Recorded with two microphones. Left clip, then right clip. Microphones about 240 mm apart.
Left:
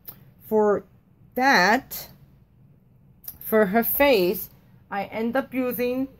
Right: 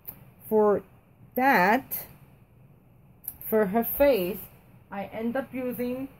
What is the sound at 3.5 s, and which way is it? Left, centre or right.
Speech, centre.